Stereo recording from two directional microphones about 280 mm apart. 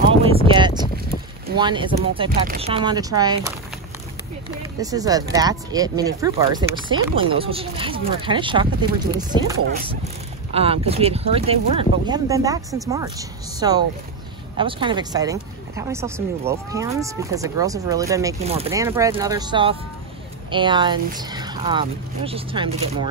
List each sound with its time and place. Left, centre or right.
0.2 s a sound: centre
1.6 s speech: centre
2.4 s chopping: right
2.7 s speech: centre
4.7 s speech: centre